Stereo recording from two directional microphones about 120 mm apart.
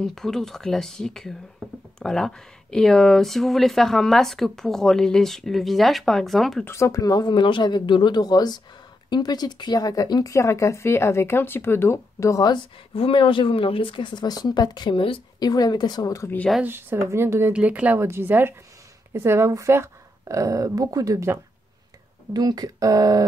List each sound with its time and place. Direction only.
0.0 s speech: 5° left (ahead or behind)
6.6 s speech: 25° left (ahead or behind)
12.9 s speech: 50° left (ahead or behind)
15.3 s speech: 35° left (ahead or behind)
16.6 s a woman's voice: 20° right (ahead or behind)
22.3 s speech: 35° right (ahead or behind)